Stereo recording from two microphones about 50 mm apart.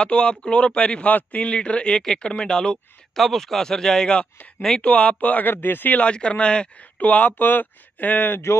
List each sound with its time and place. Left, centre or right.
0.0 s a man's voice: centre
3.2 s speech: centre
4.8 s speech: left
6.0 s a man's voice: left
6.8 s speech: left